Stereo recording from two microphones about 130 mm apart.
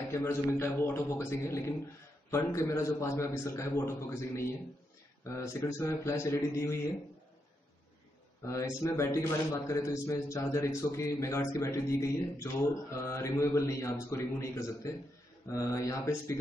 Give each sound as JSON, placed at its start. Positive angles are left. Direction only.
{"t": 0.1, "sound": "a man's voice", "side_deg": 20}
{"t": 8.5, "sound": "a man's voice", "side_deg": 25}